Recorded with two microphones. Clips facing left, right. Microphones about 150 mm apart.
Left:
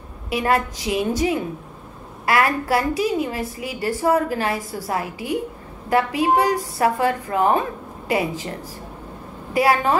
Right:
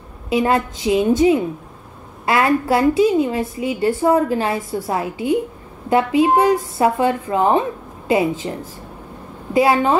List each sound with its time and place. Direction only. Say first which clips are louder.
0.3 s a woman's voice: right 3 dB; 25° right (ahead or behind)